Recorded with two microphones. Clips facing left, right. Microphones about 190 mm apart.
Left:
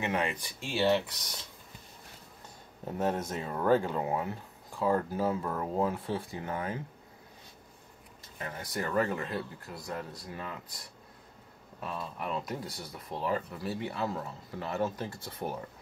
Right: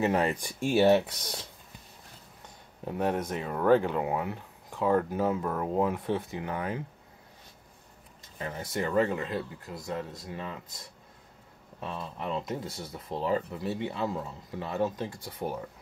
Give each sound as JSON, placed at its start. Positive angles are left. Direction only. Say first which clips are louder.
{"t": 0.0, "sound": "speech", "louder": "right 5 dB", "side_deg": -40}
{"t": 3.0, "sound": "speech", "louder": "right 2 dB", "side_deg": -15}
{"t": 8.4, "sound": "speech", "louder": "right 4 dB", "side_deg": -25}
{"t": 11.8, "sound": "speech", "louder": "right 1 dB", "side_deg": -25}